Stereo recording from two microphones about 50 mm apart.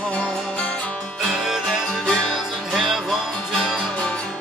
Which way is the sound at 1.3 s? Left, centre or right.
Centre.